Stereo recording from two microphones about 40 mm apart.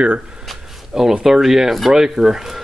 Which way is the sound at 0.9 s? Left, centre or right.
Centre.